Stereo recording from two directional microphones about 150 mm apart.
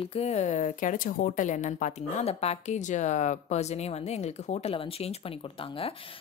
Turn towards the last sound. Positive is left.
turn(degrees=35)  # may be behind; listen again after turning